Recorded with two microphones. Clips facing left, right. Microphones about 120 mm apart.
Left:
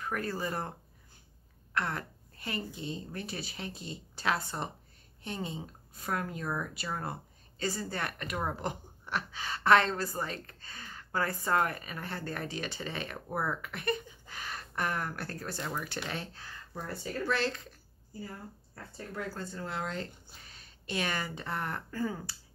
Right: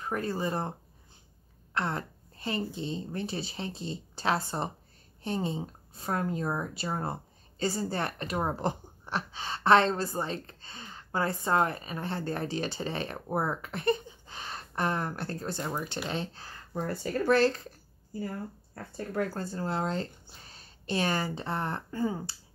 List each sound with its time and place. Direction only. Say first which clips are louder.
0.0 s speech: right 3 dB; 25° right (ahead or behind)
1.7 s a sound: right 2 dB; 25° right (ahead or behind)
2.7 s speech: right 4 dB; 30° right (ahead or behind)
16.8 s speech: right 6 dB; 50° right (ahead or behind)
18.9 s speech: right 7 dB; 55° right (ahead or behind)
19.4 s speech: right 5 dB; 35° right (ahead or behind)